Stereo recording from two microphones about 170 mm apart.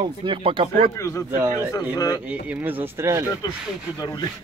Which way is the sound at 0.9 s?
15° left (ahead or behind).